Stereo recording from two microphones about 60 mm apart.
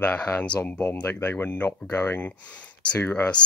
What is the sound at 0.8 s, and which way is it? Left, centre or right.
Speech, left.